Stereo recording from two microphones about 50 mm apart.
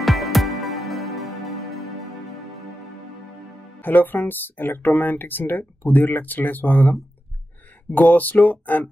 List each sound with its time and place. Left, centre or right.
0.0 s music: centre
3.8 s speech: left